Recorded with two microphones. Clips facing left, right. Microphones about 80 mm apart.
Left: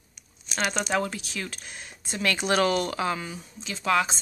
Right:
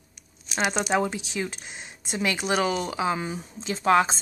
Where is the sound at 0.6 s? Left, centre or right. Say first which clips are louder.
Right 2 dB; centre.